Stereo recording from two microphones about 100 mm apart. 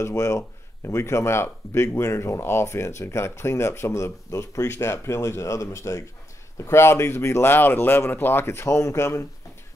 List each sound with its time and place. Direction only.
0.0 s speech: 30° left (ahead or behind)